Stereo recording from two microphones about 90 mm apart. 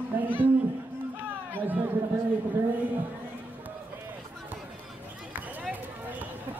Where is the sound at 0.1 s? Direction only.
20° right (ahead or behind).